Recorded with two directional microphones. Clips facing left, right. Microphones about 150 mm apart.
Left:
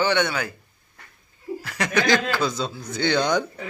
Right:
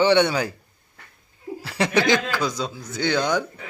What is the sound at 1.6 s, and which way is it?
Speech, 30° right (ahead or behind).